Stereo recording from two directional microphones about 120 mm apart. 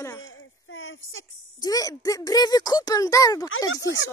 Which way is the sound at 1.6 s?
30° left (ahead or behind).